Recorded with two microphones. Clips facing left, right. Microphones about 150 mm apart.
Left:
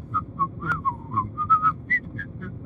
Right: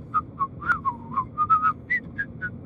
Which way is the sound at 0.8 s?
55° left (ahead or behind).